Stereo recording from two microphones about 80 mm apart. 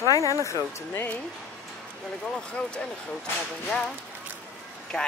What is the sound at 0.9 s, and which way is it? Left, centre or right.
Speech, left.